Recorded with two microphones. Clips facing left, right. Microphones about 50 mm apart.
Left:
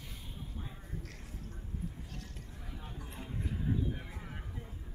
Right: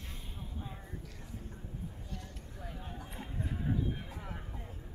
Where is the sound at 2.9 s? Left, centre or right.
Right.